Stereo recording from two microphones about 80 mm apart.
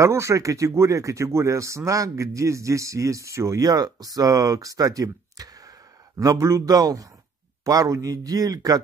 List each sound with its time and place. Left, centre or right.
0.0 s a man's voice: right